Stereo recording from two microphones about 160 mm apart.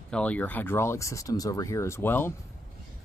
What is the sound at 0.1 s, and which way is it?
Speech, 10° left (ahead or behind).